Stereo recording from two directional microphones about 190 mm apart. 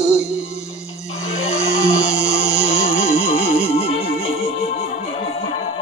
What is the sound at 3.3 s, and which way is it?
Music, 30° left (ahead or behind).